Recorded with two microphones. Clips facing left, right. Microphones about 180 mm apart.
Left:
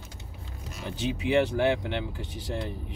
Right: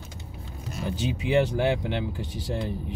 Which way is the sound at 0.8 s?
40° right (ahead or behind).